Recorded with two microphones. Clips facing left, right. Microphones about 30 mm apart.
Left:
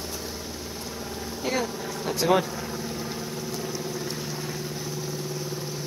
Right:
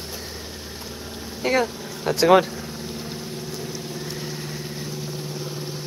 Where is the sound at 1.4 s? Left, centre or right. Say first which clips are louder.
Right 6 dB; right.